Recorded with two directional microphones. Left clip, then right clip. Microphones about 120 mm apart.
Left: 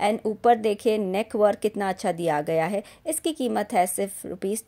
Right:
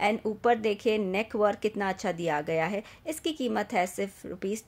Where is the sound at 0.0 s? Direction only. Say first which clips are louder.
Left 4 dB; 30° left (ahead or behind).